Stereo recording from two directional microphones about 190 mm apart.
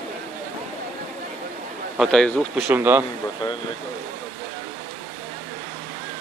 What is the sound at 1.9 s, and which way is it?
Speech, centre (ahead or behind).